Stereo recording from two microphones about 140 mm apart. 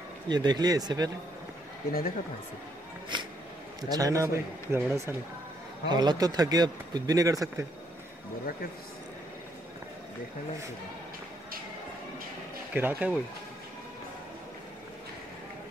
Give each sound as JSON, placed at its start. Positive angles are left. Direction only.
{"t": 0.3, "sound": "speech", "side_deg": -30}
{"t": 1.9, "sound": "speech", "side_deg": 90}
{"t": 3.9, "sound": "speech", "side_deg": -25}
{"t": 5.9, "sound": "speech", "side_deg": -30}
{"t": 12.7, "sound": "speech", "side_deg": -10}